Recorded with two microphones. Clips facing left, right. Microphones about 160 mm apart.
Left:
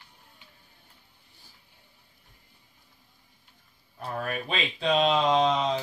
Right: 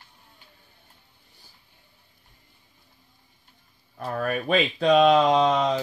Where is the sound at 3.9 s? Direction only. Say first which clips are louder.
Right 5 dB; 50° right (ahead or behind).